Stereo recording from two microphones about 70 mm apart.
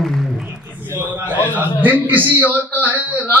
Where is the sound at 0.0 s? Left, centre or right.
Centre.